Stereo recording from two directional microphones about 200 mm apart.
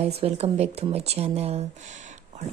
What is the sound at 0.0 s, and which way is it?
Speech, 30° right (ahead or behind).